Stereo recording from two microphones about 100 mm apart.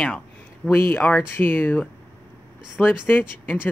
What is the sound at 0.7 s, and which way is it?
Speech, 25° left (ahead or behind).